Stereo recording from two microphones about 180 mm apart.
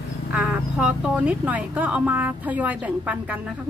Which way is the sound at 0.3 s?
5° right (ahead or behind).